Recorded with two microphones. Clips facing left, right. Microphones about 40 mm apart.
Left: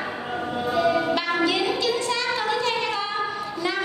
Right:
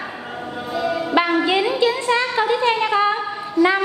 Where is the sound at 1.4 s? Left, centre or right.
Right.